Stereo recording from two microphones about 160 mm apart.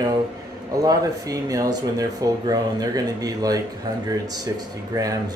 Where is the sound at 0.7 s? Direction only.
20° right (ahead or behind).